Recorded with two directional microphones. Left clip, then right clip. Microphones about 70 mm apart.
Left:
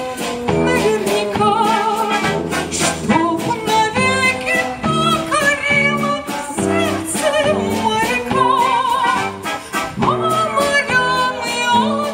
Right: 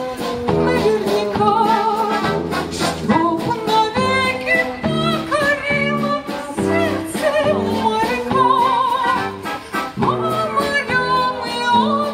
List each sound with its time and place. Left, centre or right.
0.5 s music: left